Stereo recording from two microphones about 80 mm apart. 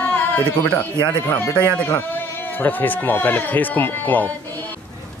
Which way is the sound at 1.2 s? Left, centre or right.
Left.